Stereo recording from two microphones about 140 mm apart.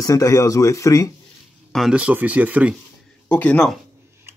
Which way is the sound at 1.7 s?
5° right (ahead or behind).